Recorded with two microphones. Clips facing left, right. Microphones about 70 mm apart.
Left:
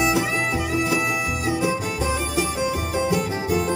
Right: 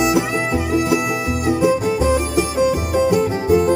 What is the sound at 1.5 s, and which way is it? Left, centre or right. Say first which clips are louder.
Music: right 7 dB; centre.